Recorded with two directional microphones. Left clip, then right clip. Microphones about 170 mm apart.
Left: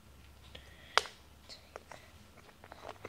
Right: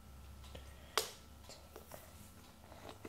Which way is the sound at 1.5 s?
25° right (ahead or behind).